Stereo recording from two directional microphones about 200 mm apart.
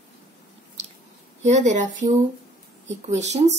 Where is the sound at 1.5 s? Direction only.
35° right (ahead or behind).